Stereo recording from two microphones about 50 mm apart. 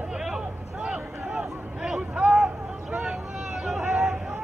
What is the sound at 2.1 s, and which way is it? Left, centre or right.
Vehicle, centre.